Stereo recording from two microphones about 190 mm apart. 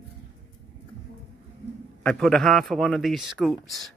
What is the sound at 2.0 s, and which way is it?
A man's voice, 5° left (ahead or behind).